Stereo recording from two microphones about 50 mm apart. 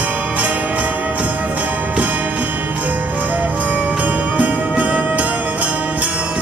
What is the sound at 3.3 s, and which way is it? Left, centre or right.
Music, right.